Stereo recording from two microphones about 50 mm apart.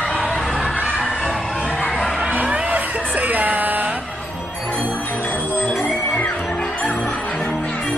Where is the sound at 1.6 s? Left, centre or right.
Centre.